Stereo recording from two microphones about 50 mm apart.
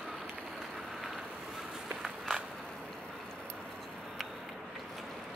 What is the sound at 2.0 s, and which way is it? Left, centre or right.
Walk, centre.